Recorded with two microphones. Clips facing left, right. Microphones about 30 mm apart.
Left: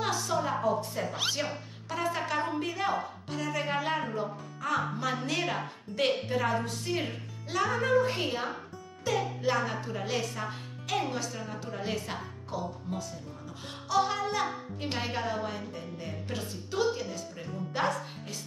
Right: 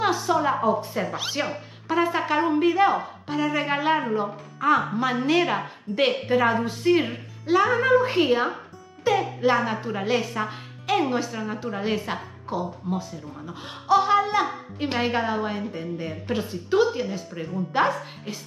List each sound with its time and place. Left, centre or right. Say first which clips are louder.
0.0 s a woman's voice: right 8 dB; right